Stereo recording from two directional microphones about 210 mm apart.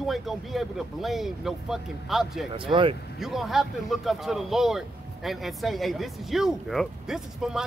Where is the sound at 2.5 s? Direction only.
25° right (ahead or behind).